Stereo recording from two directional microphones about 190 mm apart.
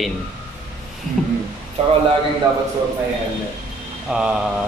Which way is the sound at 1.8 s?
35° right (ahead or behind).